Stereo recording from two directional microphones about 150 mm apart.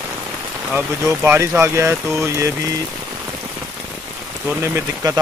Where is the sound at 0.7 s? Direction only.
15° right (ahead or behind).